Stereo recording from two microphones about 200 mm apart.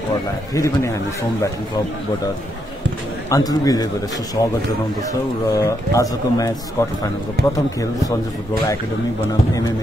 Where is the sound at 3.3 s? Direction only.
15° left (ahead or behind).